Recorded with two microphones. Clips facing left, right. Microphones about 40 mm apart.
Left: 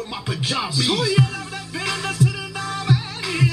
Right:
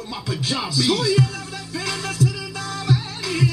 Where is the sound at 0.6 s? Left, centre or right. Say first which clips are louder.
Right 3 dB; left.